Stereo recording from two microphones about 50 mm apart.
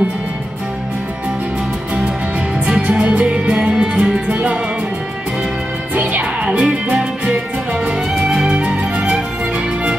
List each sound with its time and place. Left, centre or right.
2.6 s music: centre
3.5 s music: centre
6.4 s music: centre
8.2 s music: centre